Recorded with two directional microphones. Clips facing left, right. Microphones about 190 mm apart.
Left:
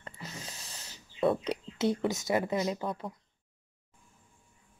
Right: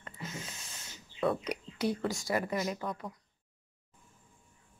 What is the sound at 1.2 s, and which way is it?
Speech, 25° left (ahead or behind).